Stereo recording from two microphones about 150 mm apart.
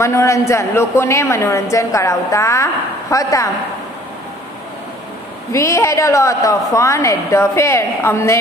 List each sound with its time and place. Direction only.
0.0 s a woman's voice: 20° left (ahead or behind)
5.5 s a woman's voice: 20° left (ahead or behind)